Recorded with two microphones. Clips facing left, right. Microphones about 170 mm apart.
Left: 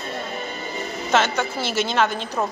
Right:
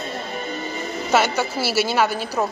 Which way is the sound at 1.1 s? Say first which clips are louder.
Right 1 dB; 10° right (ahead or behind).